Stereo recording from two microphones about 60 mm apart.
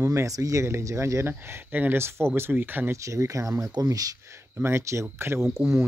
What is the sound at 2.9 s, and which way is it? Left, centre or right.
Speech, right.